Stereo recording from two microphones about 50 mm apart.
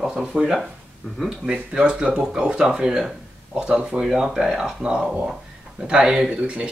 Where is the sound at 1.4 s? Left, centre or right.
Centre.